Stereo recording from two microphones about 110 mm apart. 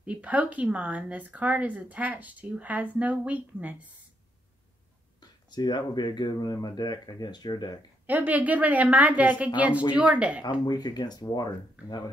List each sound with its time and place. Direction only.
0.0 s speech: 10° right (ahead or behind)
5.2 s speech: 40° left (ahead or behind)
8.1 s speech: 15° right (ahead or behind)
10.4 s speech: 40° left (ahead or behind)